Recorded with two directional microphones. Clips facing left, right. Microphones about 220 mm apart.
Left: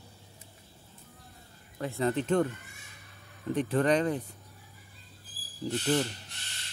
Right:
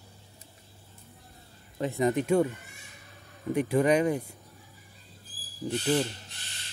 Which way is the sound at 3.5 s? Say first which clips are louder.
Right 2 dB; 10° right (ahead or behind).